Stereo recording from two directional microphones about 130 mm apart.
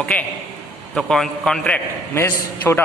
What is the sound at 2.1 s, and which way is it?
Speech, 20° left (ahead or behind).